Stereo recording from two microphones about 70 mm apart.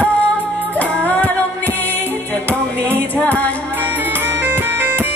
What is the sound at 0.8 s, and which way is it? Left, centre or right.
Music, left.